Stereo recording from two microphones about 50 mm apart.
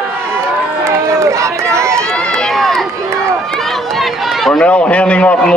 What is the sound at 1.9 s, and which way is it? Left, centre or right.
Run, centre.